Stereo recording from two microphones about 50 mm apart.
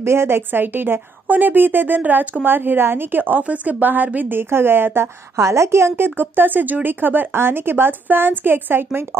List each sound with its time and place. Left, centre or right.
0.0 s a woman's voice: right
1.2 s a woman's voice: right
5.4 s a woman's voice: right